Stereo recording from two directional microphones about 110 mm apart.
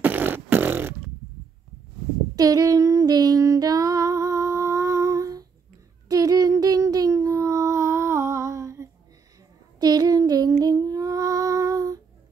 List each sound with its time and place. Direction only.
0.0 s beatboxing: 15° right (ahead or behind)
2.3 s female singing: 35° right (ahead or behind)
6.0 s child singing: 35° right (ahead or behind)